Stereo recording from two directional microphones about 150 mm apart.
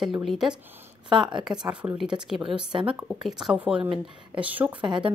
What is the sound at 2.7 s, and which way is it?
Speech, 35° right (ahead or behind).